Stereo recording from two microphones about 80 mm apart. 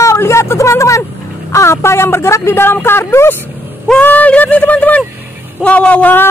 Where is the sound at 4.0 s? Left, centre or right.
Centre.